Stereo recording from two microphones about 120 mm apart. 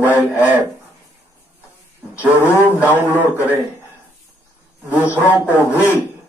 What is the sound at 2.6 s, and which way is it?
Speech, 15° right (ahead or behind).